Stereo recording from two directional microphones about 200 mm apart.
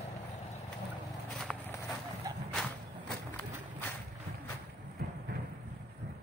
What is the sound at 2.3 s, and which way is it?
Whip, 20° right (ahead or behind).